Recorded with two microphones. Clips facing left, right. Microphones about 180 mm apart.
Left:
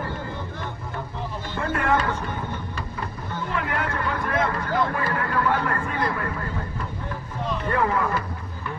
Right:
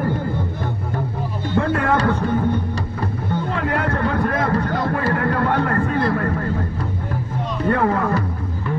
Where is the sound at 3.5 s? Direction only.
35° right (ahead or behind).